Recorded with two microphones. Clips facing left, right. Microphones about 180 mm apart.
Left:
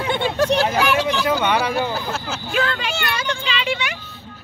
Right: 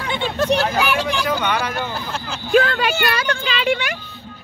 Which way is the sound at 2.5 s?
45° right (ahead or behind).